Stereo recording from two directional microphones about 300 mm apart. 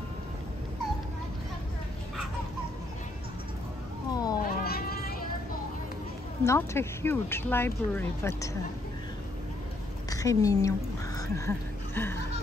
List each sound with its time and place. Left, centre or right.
4.1 s a sound: centre
4.5 s cat: left
6.4 s speech: centre
10.0 s a woman's voice: centre